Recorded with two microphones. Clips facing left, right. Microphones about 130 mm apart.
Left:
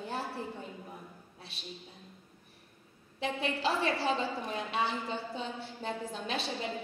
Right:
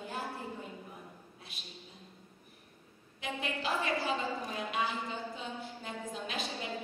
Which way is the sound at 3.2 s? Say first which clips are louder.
Left 4 dB; 30° left (ahead or behind).